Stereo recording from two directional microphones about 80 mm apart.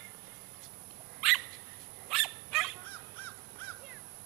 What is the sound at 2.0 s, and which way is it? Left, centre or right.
Dog, centre.